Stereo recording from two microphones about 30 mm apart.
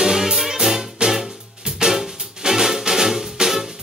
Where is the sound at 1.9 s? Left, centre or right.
Centre.